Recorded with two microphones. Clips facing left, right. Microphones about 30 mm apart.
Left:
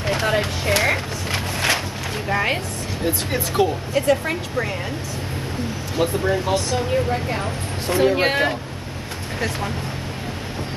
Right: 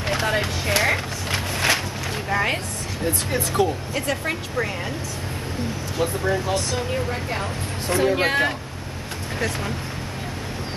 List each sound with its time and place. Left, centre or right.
0.0 s a sound: centre
2.2 s speech: centre
3.6 s speech: left
3.9 s speech: centre
6.5 s speech: centre